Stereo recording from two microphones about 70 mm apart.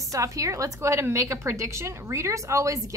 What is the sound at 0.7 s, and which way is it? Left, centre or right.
A woman's voice, right.